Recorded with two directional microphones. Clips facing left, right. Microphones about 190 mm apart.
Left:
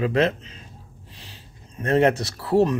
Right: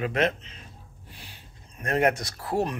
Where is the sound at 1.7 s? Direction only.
25° left (ahead or behind).